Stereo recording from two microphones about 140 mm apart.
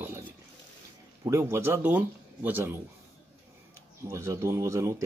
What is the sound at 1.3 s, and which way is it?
Speech, 20° right (ahead or behind).